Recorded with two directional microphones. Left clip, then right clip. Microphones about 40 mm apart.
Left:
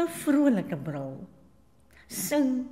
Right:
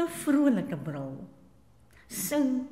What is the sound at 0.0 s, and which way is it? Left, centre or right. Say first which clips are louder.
A woman's voice: left 1 dB; centre.